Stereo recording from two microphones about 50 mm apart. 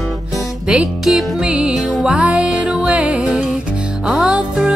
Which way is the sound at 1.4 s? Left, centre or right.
Right.